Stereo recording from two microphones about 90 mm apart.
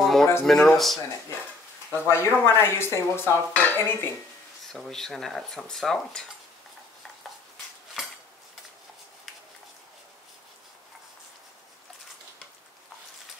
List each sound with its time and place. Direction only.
0.0 s a sound: centre (ahead or behind)
0.5 s cutlery: centre (ahead or behind)
2.0 s speech: 30° left (ahead or behind)
3.5 s dishes: 20° left (ahead or behind)
4.7 s cutlery: 5° left (ahead or behind)